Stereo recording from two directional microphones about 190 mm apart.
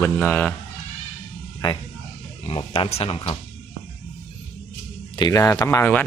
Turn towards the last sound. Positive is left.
turn(degrees=10)  # may be behind; listen again after turning